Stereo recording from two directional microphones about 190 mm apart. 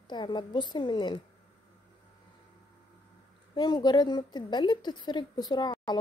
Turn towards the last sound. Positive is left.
turn(degrees=20)  # may be behind; listen again after turning